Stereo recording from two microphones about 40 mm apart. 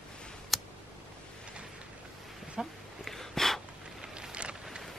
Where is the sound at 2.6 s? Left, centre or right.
Centre.